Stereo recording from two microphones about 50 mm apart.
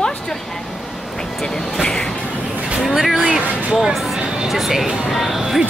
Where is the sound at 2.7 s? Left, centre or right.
Centre.